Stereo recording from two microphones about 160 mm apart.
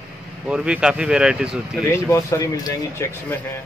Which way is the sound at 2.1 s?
20° left (ahead or behind).